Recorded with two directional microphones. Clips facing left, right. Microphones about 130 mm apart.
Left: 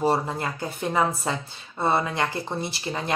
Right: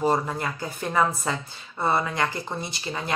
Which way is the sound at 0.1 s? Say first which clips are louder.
Even; 25° left (ahead or behind).